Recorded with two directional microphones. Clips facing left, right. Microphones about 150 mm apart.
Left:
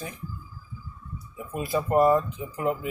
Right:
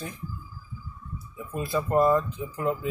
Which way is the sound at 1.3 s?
10° left (ahead or behind).